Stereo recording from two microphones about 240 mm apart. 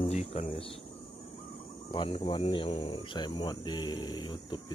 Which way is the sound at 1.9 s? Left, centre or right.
Left.